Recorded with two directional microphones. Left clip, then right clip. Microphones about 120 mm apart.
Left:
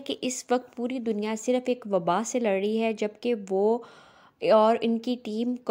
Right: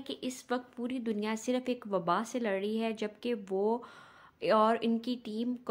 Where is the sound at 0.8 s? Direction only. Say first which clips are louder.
Left 6 dB; 35° left (ahead or behind).